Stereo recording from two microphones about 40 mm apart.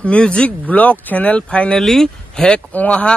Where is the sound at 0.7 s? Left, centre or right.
Left.